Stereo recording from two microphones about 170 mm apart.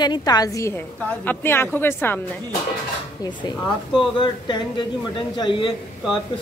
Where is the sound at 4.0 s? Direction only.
25° left (ahead or behind).